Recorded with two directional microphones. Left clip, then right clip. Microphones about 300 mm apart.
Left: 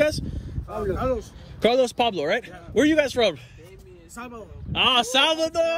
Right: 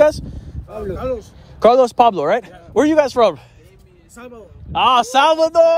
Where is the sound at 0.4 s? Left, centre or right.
Centre.